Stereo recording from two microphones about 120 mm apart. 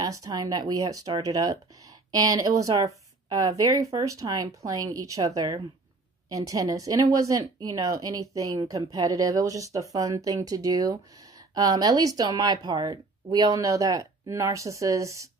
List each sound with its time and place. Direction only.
0.0 s speech: 30° right (ahead or behind)